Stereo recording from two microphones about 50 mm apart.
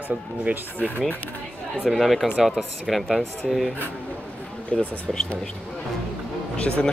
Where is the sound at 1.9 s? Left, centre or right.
Centre.